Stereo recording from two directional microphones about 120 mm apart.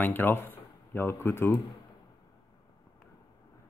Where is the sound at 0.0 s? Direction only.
15° left (ahead or behind).